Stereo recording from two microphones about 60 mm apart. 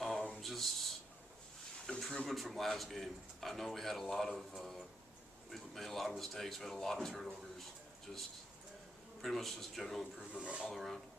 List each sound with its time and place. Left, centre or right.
0.4 s a sound: centre
1.9 s a man's voice: centre
9.2 s a man's voice: centre
10.3 s speech: centre
10.6 s a man's voice: centre